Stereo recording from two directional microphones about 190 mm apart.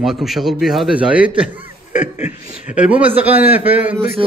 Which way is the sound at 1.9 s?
40° left (ahead or behind).